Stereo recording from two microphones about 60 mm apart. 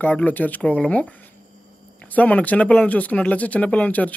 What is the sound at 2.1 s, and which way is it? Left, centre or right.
Speech, left.